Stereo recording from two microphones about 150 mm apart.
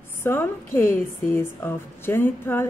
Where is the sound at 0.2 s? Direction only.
15° left (ahead or behind).